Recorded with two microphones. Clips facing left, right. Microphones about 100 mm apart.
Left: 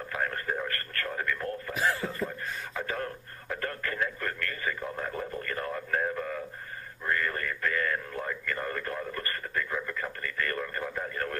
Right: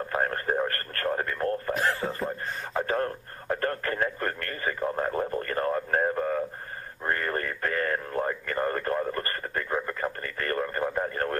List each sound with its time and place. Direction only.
0.1 s speech: 40° right (ahead or behind)
2.0 s a sound: 35° right (ahead or behind)
7.1 s radio: 40° right (ahead or behind)